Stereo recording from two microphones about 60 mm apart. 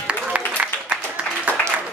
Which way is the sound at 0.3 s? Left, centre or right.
Centre.